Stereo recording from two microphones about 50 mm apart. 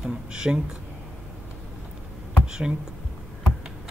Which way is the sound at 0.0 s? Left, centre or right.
Centre.